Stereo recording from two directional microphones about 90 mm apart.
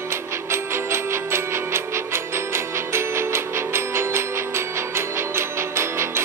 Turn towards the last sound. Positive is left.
turn(degrees=-30)  # may be behind; listen again after turning